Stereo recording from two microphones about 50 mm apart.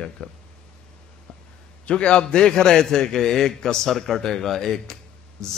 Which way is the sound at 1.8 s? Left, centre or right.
Centre.